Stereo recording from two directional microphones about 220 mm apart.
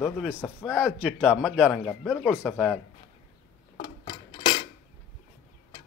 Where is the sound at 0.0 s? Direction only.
Centre (ahead or behind).